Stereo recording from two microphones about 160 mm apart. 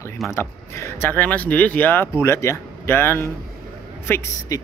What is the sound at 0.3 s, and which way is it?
Speech, 15° left (ahead or behind).